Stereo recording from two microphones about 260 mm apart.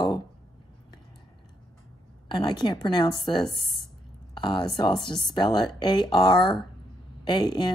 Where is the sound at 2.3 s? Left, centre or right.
Centre.